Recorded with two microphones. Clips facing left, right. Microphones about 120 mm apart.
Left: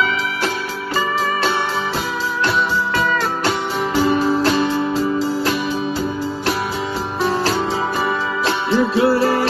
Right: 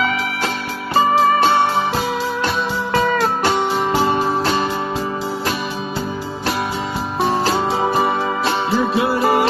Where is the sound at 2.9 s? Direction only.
35° right (ahead or behind).